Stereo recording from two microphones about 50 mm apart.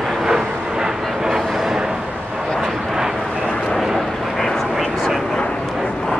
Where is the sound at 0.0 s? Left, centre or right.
Centre.